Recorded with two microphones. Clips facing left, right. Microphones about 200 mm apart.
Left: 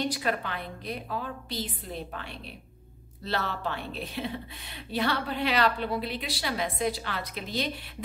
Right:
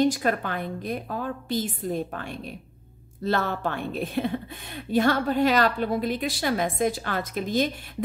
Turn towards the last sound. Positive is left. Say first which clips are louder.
# right 7 dB
turn(degrees=-45)  # may be behind; listen again after turning